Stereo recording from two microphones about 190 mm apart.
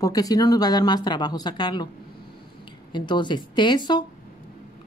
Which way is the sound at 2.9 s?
25° left (ahead or behind).